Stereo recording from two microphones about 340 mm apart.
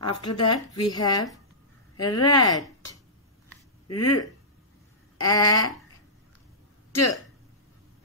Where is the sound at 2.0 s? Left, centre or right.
Left.